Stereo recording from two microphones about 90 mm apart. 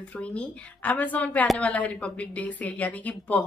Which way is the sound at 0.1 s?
15° left (ahead or behind).